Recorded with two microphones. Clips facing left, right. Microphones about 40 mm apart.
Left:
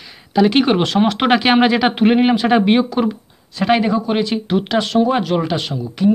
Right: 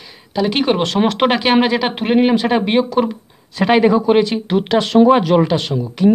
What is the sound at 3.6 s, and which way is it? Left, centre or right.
Speech, centre.